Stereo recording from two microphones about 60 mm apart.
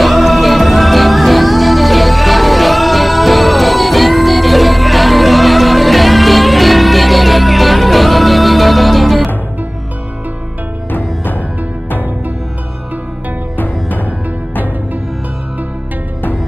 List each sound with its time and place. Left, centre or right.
0.0 s music: centre
10.9 s music: left
13.6 s music: left